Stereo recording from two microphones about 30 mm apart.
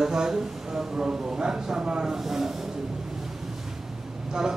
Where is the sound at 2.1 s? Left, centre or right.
Centre.